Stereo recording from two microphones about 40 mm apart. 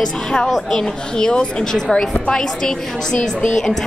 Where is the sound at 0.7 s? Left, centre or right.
Centre.